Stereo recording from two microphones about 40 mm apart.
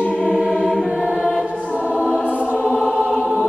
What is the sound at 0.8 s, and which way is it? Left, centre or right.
Choir, right.